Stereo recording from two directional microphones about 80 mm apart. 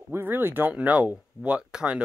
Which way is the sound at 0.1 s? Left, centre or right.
Right.